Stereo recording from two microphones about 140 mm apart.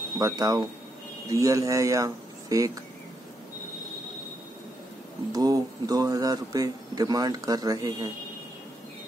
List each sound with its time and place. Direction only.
0.2 s speech: 25° right (ahead or behind)
5.3 s speech: 25° right (ahead or behind)